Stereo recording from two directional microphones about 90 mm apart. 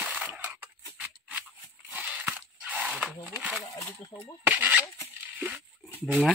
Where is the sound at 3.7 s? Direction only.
35° left (ahead or behind).